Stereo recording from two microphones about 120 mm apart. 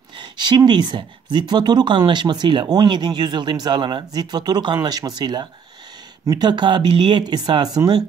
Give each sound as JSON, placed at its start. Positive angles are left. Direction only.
{"t": 0.1, "sound": "speech", "side_deg": -40}